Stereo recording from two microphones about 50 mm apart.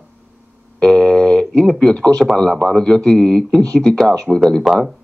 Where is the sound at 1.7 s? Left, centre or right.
Centre.